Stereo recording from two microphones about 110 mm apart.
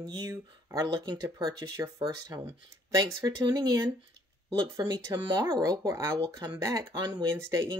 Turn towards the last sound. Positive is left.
turn(degrees=-30)  # may be behind; listen again after turning